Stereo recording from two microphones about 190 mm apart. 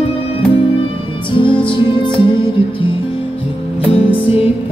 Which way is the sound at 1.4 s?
25° left (ahead or behind).